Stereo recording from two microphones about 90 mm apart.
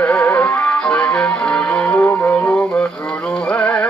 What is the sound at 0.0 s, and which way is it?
Music, 15° left (ahead or behind).